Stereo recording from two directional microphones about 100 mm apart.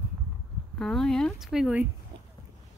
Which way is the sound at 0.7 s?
5° left (ahead or behind).